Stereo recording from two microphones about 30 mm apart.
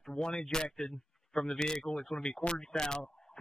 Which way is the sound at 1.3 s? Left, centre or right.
Centre.